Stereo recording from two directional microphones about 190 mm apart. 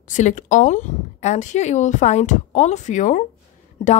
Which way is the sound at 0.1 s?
40° left (ahead or behind).